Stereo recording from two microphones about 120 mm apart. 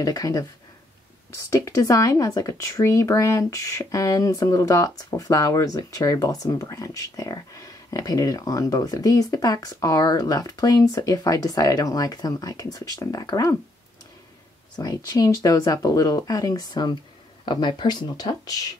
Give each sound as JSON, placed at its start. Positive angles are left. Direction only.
{"t": 0.0, "sound": "speech", "side_deg": 30}
{"t": 1.5, "sound": "speech", "side_deg": 25}
{"t": 14.8, "sound": "speech", "side_deg": 30}